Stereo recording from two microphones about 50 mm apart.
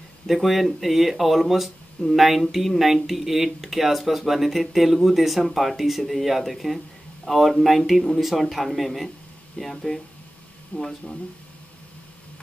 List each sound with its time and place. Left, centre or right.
0.3 s speech: centre
10.7 s speech: left